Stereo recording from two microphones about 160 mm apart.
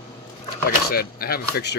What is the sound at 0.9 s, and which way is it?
Speech, 70° left (ahead or behind).